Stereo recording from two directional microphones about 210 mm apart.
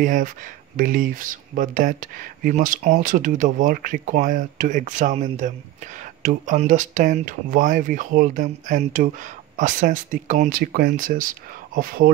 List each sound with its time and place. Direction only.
0.0 s speech: 40° right (ahead or behind)